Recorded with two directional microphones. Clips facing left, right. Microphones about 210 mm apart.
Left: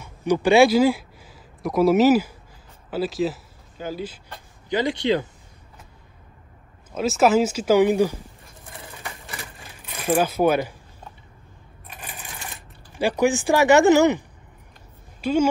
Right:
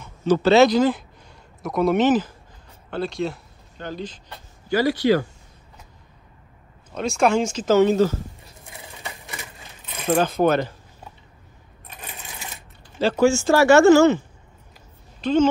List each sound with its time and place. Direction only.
0.0 s speech: 15° left (ahead or behind)
4.6 s speech: 20° left (ahead or behind)
6.9 s speech: 5° left (ahead or behind)
9.0 s crushing: 20° right (ahead or behind)
9.8 s speech: 10° left (ahead or behind)
11.9 s coin: 5° left (ahead or behind)
13.0 s a woman's voice: 15° left (ahead or behind)